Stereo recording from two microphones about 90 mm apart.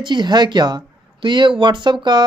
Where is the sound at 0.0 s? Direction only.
55° right (ahead or behind).